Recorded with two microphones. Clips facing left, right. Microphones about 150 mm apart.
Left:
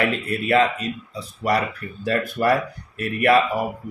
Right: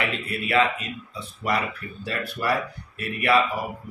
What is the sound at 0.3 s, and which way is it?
Speech, 40° left (ahead or behind).